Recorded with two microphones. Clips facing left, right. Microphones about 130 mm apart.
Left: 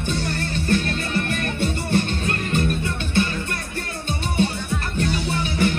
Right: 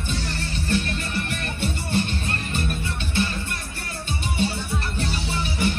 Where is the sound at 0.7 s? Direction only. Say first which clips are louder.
Left 3 dB; 50° left (ahead or behind).